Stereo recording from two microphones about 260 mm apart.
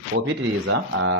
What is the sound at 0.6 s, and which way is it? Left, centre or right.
Speech, right.